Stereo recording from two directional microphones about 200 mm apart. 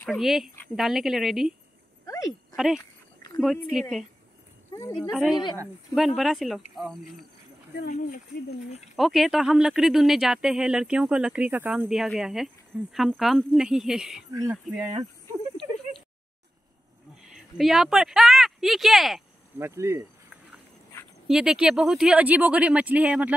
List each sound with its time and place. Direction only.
0.0 s speech: centre (ahead or behind)
2.0 s a sound: 15° left (ahead or behind)
2.5 s speech: centre (ahead or behind)
4.7 s a woman's voice: 15° left (ahead or behind)
5.1 s speech: centre (ahead or behind)
7.8 s speech: 40° left (ahead or behind)
8.9 s speech: centre (ahead or behind)
14.8 s speech: 30° right (ahead or behind)
17.2 s speech: centre (ahead or behind)
19.6 s cricket: 15° right (ahead or behind)
21.3 s speech: centre (ahead or behind)